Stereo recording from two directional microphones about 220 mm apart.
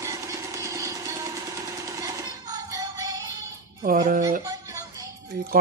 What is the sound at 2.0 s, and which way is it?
Music, 15° right (ahead or behind).